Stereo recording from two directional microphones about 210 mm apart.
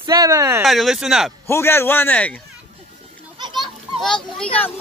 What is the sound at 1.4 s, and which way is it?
Speech, 10° left (ahead or behind).